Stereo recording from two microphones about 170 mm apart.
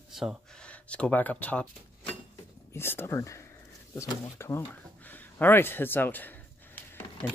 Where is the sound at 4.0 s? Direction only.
15° left (ahead or behind).